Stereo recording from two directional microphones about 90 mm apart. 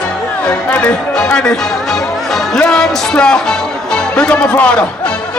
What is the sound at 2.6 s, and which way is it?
Speech, 10° left (ahead or behind).